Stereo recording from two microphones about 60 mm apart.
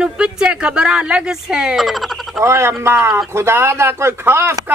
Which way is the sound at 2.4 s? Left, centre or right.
Right.